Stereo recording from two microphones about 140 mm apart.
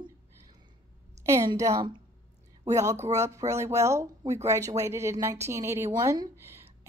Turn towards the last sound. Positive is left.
turn(degrees=-20)  # may be behind; listen again after turning